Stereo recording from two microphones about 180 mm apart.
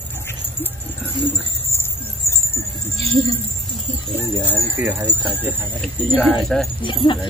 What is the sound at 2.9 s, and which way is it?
Jingle bell, 35° right (ahead or behind).